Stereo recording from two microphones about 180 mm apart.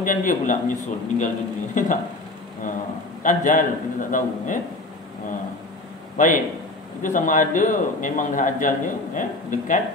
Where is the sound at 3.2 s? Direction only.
45° left (ahead or behind).